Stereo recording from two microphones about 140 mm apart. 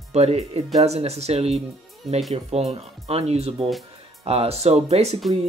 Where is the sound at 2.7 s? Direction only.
45° right (ahead or behind).